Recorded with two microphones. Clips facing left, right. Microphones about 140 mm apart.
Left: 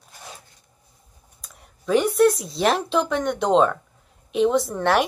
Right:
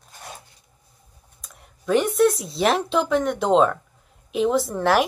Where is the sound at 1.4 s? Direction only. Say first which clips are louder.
Right 1 dB; centre (ahead or behind).